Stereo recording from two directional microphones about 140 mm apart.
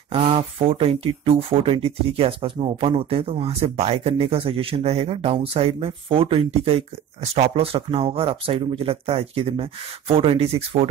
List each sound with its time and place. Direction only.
0.1 s speech: 40° right (ahead or behind)